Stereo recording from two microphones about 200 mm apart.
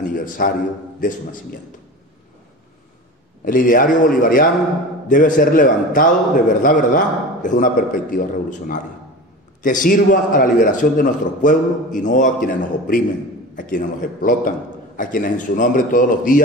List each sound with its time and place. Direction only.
0.0 s a sound: 40° left (ahead or behind)
1.0 s a man's voice: 40° left (ahead or behind)
3.4 s a man's voice: 45° left (ahead or behind)